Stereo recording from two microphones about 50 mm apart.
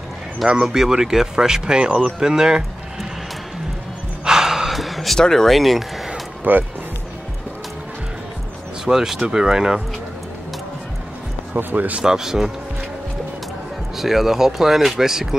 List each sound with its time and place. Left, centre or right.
0.5 s speech: centre
4.2 s gasp: centre
5.2 s speech: centre
6.5 s speech: right
8.8 s speech: centre
11.5 s speech: right
12.0 s speech: centre
13.9 s speech: centre